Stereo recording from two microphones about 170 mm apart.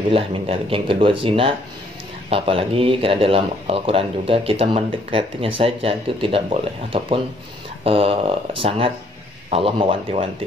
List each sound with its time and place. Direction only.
0.1 s speech: 30° right (ahead or behind)